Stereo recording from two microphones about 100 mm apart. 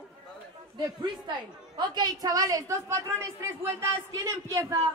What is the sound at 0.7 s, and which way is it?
A man's voice, 50° right (ahead or behind).